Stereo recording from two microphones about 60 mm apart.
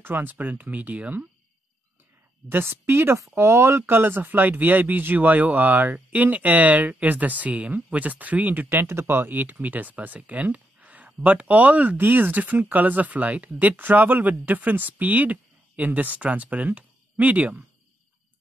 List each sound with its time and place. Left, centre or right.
0.0 s speech: right
2.5 s speech: right
3.2 s speech: right
8.6 s speech: right